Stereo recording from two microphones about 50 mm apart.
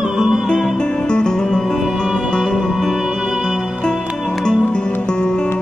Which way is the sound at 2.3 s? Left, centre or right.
Centre.